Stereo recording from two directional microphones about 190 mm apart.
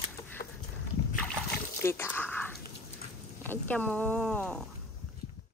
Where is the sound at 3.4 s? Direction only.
10° left (ahead or behind).